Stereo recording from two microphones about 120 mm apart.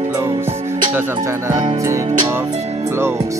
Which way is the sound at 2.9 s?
20° right (ahead or behind).